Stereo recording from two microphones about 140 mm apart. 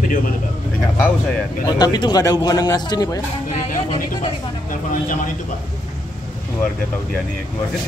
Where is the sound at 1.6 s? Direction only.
30° left (ahead or behind).